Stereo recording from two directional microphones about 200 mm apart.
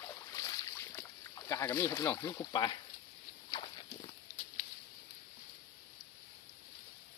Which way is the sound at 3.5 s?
20° left (ahead or behind).